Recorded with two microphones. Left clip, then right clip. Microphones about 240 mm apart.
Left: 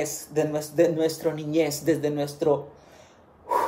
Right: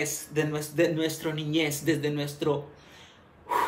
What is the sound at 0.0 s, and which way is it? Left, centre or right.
Speech, centre.